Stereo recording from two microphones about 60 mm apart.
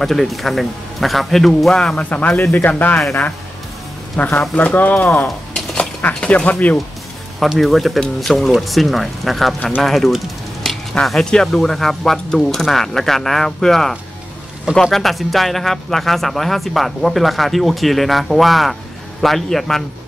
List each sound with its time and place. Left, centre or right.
0.0 s speech: centre
2.0 s speech: left
4.4 s speech: left
7.3 s speech: centre